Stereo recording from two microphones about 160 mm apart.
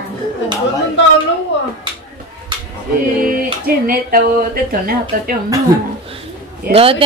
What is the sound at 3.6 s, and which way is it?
Speech, 65° right (ahead or behind).